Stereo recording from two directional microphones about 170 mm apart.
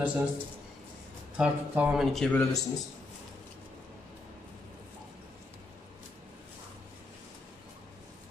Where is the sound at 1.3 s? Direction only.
5° right (ahead or behind); by 2.6 s 10° left (ahead or behind).